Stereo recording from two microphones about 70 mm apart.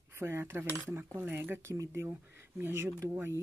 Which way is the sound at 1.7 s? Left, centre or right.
Right.